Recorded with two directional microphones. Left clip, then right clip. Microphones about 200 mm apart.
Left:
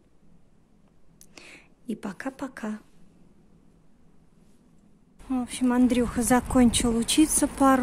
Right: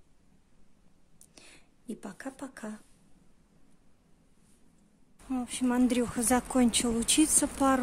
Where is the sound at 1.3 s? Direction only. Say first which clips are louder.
Left 8 dB; 5° left (ahead or behind).